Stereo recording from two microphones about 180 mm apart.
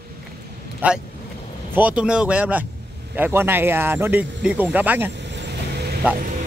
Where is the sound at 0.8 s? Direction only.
10° right (ahead or behind).